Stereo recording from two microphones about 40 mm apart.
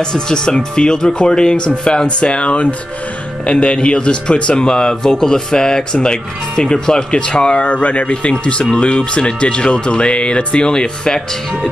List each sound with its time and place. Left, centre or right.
0.0 s speech: centre
7.6 s speech: left; by 11.7 s centre